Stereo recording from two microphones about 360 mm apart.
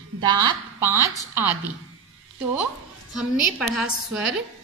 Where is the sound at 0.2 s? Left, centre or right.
Centre.